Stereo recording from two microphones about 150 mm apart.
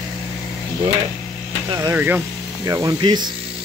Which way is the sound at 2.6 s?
25° right (ahead or behind).